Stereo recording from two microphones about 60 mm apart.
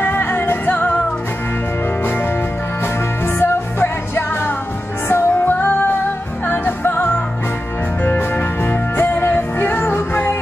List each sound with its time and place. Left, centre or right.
0.0 s music: left
3.3 s music: left